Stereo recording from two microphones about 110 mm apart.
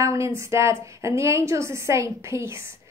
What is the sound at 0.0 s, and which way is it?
A woman's voice, 25° right (ahead or behind).